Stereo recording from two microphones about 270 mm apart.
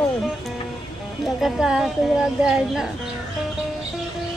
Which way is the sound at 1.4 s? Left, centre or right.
Centre.